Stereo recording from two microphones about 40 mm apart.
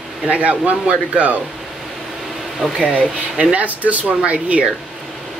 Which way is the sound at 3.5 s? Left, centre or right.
Right.